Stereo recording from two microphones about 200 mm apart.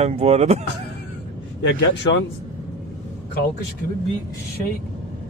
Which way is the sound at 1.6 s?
60° left (ahead or behind).